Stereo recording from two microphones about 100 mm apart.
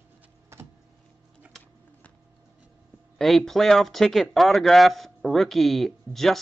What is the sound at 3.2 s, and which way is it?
Speech, 5° left (ahead or behind).